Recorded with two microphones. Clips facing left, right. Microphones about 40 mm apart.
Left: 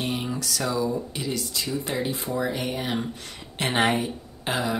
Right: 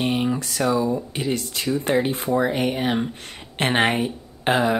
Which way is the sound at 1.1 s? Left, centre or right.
Right.